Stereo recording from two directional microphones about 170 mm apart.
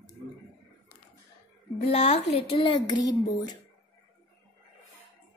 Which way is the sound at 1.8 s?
35° left (ahead or behind).